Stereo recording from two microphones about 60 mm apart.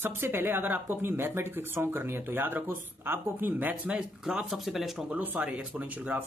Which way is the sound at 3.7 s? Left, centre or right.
Centre.